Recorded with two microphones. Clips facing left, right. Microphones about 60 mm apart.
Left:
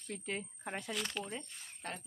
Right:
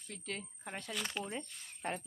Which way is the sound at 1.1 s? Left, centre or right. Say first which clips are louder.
Right 1 dB; centre.